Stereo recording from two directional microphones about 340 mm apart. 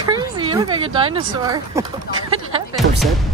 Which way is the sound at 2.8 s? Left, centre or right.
Right.